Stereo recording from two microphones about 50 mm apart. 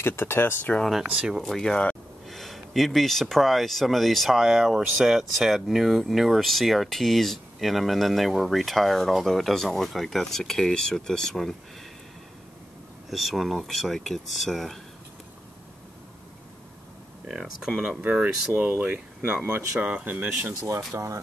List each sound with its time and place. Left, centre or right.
0.0 s speech: left
0.8 s speech: centre
1.4 s speech: centre
2.2 s speech: centre
13.1 s speech: centre
17.3 s speech: centre
18.0 s speech: right
20.9 s speech: right